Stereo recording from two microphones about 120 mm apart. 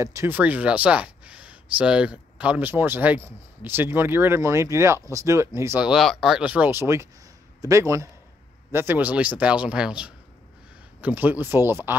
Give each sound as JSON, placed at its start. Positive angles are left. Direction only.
{"t": 0.0, "sound": "speech", "side_deg": -25}
{"t": 0.4, "sound": "speech", "side_deg": -10}
{"t": 5.8, "sound": "a man's voice", "side_deg": -5}